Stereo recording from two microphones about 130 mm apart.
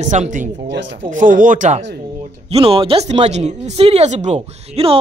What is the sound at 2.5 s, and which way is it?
Speech, 45° right (ahead or behind).